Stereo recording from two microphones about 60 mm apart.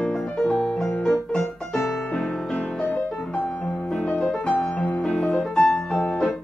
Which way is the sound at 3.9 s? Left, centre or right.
Centre.